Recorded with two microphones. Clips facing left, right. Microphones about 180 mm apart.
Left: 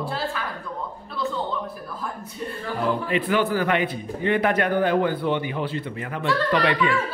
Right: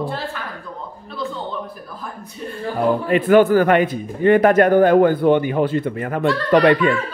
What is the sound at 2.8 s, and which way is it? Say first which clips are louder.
Speech: right 7 dB; 50° right (ahead or behind).